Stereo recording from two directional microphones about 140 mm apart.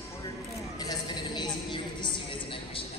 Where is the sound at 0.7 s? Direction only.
30° left (ahead or behind).